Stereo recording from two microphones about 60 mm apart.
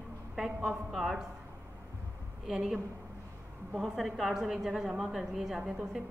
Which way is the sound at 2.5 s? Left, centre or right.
Centre.